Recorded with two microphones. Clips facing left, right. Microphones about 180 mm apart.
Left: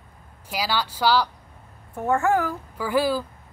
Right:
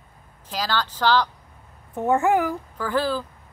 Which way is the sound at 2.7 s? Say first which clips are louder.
Left 3 dB; 10° left (ahead or behind).